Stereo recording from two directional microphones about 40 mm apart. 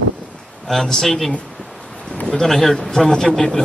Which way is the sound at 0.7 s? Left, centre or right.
Centre.